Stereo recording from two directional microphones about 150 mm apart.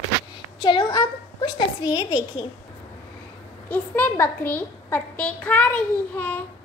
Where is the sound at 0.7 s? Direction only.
30° left (ahead or behind).